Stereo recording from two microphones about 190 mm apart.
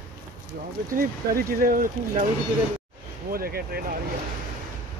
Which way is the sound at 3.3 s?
50° right (ahead or behind).